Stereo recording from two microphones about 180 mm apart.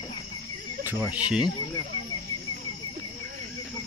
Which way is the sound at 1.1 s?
5° right (ahead or behind).